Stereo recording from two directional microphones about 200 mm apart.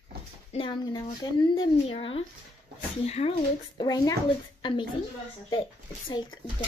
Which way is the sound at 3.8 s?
20° left (ahead or behind).